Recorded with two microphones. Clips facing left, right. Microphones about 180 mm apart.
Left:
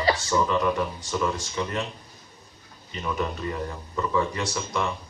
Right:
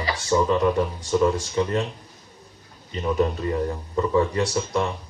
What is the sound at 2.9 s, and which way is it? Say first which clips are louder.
Speech: right 7 dB; 35° right (ahead or behind).